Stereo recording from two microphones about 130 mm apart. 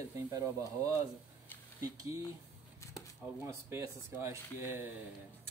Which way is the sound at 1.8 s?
25° right (ahead or behind).